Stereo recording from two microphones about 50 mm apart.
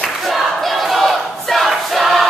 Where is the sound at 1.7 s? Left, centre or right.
Centre.